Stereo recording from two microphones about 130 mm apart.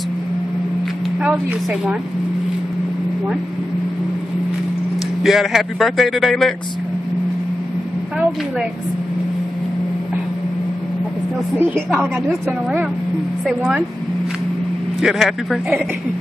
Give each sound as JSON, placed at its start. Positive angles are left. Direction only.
{"t": 1.2, "sound": "a woman's voice", "side_deg": -5}
{"t": 5.2, "sound": "a man's voice", "side_deg": 0}
{"t": 11.5, "sound": "a woman's voice", "side_deg": -15}
{"t": 13.5, "sound": "a man's voice", "side_deg": 0}
{"t": 15.0, "sound": "a man's voice", "side_deg": -5}